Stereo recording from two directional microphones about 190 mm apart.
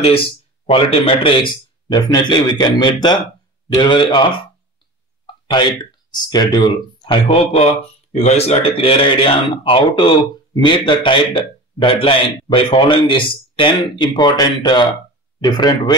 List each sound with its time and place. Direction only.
0.7 s speech: 30° left (ahead or behind)
5.2 s a sound: 25° left (ahead or behind)
6.1 s speech: 20° left (ahead or behind)